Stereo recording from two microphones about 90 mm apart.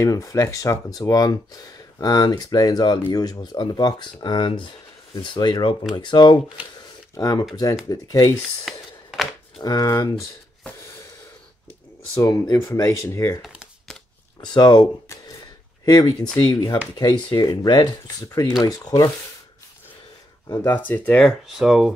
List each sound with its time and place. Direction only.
0.0 s speech: 35° left (ahead or behind); by 6.4 s 60° left (ahead or behind)
7.2 s speech: 45° left (ahead or behind)
8.6 s a sound: centre (ahead or behind)
9.6 s speech: 45° left (ahead or behind)
12.2 s speech: 35° left (ahead or behind)
13.4 s crumpling: 10° right (ahead or behind)
14.4 s speech: 55° left (ahead or behind)
15.8 s speech: 45° left (ahead or behind)
20.7 s speech: 20° left (ahead or behind)
21.2 s speech: centre (ahead or behind)